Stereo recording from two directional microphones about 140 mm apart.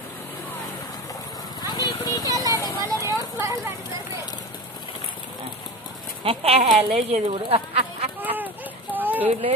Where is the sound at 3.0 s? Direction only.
20° right (ahead or behind).